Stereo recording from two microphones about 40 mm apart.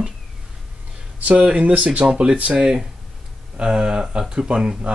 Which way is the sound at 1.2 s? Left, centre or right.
Right.